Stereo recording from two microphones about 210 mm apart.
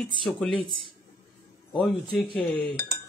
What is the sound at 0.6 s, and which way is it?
Speech, 25° right (ahead or behind).